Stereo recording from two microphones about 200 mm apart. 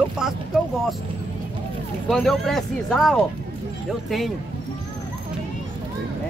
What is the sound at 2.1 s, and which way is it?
Speech, centre (ahead or behind).